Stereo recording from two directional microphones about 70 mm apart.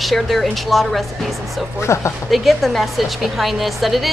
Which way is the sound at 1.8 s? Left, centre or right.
Left.